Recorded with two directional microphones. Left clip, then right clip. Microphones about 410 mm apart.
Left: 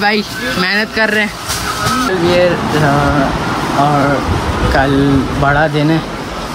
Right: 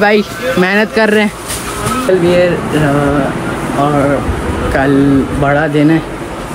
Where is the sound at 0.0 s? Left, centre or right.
Centre.